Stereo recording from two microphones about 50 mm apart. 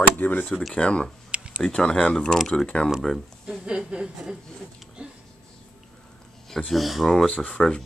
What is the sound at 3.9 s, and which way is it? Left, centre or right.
Chuckle, centre.